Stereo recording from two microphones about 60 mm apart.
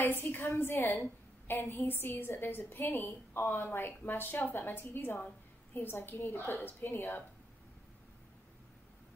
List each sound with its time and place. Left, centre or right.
0.0 s a woman's voice: left